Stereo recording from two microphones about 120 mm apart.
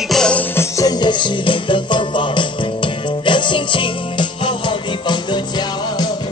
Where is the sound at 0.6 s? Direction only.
30° left (ahead or behind).